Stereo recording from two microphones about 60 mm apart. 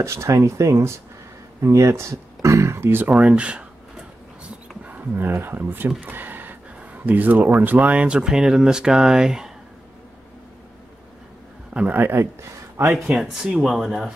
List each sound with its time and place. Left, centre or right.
0.0 s speech: right
3.1 s speech: centre
4.8 s speech: right; by 9.5 s centre
11.9 s speech: right
13.1 s speech: centre